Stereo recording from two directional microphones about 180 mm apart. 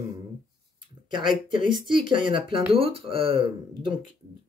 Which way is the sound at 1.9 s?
25° right (ahead or behind).